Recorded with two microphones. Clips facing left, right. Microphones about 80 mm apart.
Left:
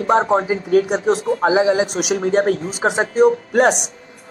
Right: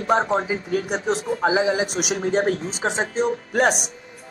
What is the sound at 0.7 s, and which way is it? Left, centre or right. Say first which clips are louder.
Speech: left 9 dB; left.